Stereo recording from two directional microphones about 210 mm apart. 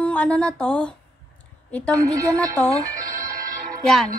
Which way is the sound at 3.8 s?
Centre (ahead or behind).